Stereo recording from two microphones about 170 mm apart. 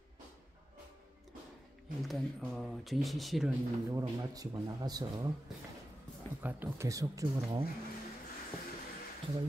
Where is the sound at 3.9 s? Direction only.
20° right (ahead or behind).